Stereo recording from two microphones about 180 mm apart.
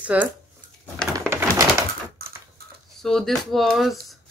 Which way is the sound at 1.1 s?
15° right (ahead or behind).